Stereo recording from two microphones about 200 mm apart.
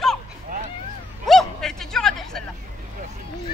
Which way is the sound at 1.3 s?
Centre (ahead or behind).